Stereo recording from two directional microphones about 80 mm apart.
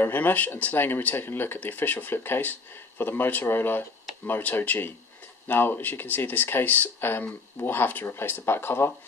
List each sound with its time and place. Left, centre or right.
0.0 s speech: left